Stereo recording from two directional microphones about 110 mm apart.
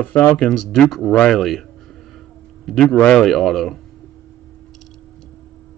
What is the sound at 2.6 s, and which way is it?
Speech, 5° left (ahead or behind).